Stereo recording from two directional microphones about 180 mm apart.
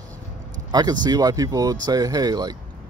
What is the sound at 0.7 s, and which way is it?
Speech, 20° right (ahead or behind).